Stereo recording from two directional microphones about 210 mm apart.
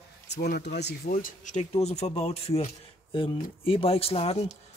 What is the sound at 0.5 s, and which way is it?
Speech, 55° left (ahead or behind).